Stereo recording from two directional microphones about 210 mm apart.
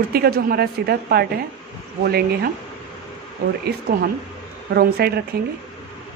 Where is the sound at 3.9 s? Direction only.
45° right (ahead or behind).